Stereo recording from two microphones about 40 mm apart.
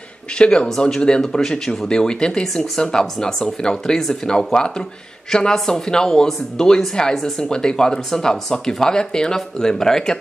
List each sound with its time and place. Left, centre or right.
0.4 s speech: left
2.4 s speech: centre